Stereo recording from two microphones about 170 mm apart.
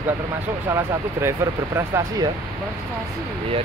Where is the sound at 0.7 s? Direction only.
15° right (ahead or behind).